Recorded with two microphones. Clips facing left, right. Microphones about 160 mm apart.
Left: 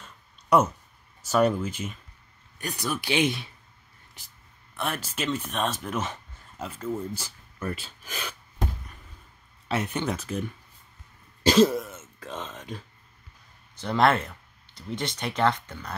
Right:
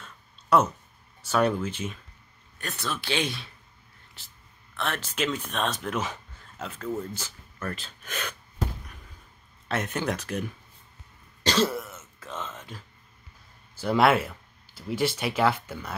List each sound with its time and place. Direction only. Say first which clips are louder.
0.0 s a sound: right 1 dB; 10° left (ahead or behind)
1.2 s speech: left 2 dB; 10° left (ahead or behind)
4.7 s speech: right 1 dB; 10° left (ahead or behind)
9.7 s speech: left 1 dB; 5° left (ahead or behind)
11.4 s throat clearing: left 6 dB; 10° left (ahead or behind)
13.7 s speech: right 1 dB; 5° right (ahead or behind)